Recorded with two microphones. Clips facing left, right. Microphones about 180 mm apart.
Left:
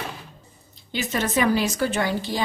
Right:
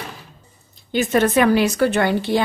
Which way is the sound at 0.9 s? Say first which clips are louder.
Right 8 dB; 55° right (ahead or behind).